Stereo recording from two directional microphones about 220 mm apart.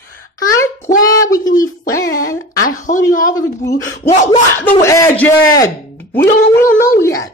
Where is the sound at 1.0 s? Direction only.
15° left (ahead or behind).